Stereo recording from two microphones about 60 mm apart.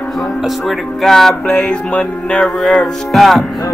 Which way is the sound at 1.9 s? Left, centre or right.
Centre.